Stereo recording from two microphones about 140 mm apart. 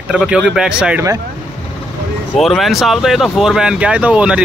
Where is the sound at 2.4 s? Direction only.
Centre (ahead or behind).